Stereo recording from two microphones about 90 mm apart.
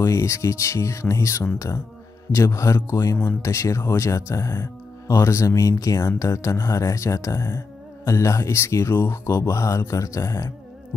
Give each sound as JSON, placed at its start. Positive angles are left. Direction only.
{"t": 0.0, "sound": "speech", "side_deg": 35}